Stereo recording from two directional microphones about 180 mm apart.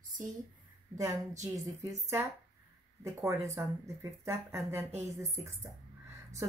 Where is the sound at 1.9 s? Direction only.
15° right (ahead or behind).